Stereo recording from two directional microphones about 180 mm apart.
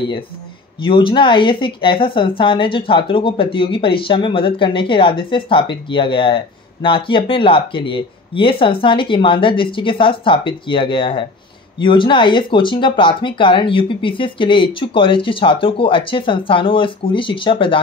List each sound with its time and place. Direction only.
0.7 s a woman's voice: 25° left (ahead or behind)